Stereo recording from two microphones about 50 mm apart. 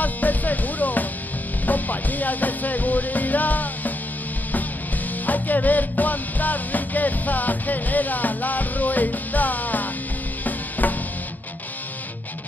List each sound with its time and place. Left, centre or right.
0.0 s music: left
5.2 s music: left